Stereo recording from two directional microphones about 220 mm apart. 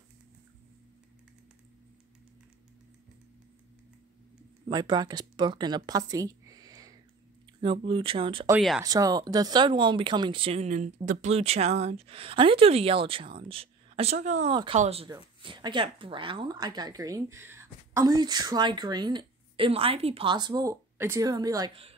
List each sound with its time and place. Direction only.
4.6 s a woman's voice: 20° right (ahead or behind)
8.5 s speech: centre (ahead or behind)
8.8 s speech: 15° right (ahead or behind)